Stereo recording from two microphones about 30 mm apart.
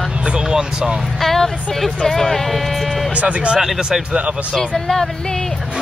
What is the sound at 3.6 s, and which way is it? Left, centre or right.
Music, centre.